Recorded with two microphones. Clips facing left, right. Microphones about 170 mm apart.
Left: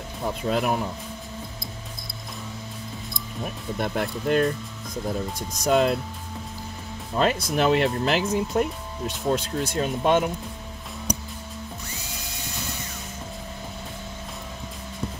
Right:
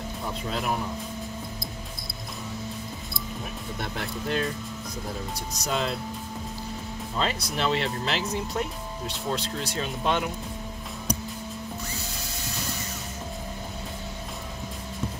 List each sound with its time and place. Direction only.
0.5 s speech: 50° left (ahead or behind)
3.8 s speech: 50° left (ahead or behind)
5.7 s speech: 55° left (ahead or behind)
7.2 s speech: 50° left (ahead or behind)